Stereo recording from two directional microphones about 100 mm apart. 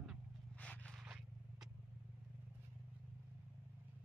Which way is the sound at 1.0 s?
5° right (ahead or behind).